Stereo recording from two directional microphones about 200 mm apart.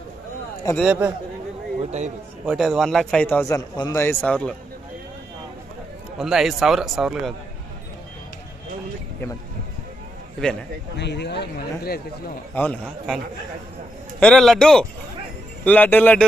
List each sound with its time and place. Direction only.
0.7 s speech: 5° right (ahead or behind)
1.8 s speech: 35° right (ahead or behind)
2.4 s speech: centre (ahead or behind)
6.1 s speech: centre (ahead or behind)
10.4 s speech: 5° left (ahead or behind)
11.0 s speech: 60° left (ahead or behind)
12.5 s speech: 5° left (ahead or behind)
14.2 s a man's voice: centre (ahead or behind)